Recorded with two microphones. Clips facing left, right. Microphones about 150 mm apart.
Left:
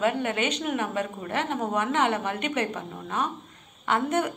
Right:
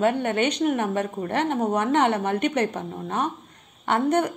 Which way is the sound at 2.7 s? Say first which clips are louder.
Right 4 dB; 30° right (ahead or behind).